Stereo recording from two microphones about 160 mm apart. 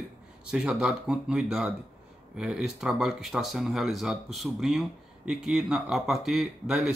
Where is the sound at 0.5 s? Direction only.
5° right (ahead or behind).